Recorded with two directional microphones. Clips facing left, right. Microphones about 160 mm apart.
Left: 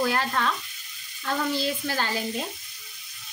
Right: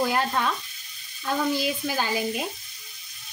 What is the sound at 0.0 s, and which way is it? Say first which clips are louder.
Frying: right 1 dB; 20° right (ahead or behind).